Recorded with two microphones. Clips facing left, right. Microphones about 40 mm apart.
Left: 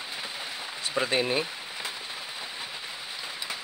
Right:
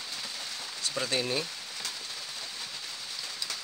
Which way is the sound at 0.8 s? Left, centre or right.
Left.